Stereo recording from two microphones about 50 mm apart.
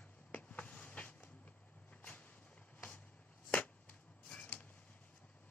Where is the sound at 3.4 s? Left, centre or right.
Left.